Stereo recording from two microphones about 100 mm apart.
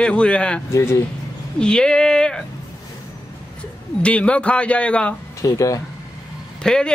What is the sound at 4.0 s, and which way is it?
A man's voice, 10° left (ahead or behind).